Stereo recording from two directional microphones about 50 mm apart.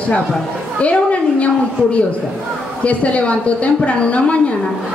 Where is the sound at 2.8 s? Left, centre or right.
Left.